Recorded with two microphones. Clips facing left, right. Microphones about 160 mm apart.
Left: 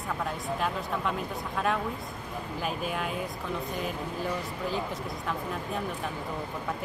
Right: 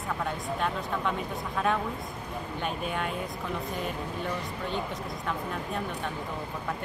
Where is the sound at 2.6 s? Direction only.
Centre (ahead or behind).